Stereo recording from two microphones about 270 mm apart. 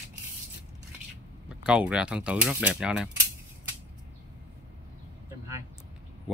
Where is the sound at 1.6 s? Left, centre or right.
Centre.